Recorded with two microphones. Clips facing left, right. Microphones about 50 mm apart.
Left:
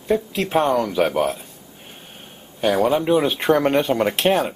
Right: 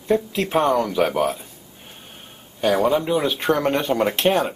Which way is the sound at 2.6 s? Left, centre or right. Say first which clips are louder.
Even; centre.